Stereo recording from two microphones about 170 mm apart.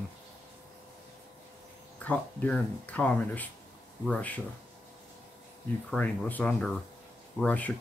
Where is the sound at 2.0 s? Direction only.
10° left (ahead or behind).